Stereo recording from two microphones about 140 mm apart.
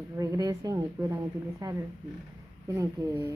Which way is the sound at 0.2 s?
25° right (ahead or behind).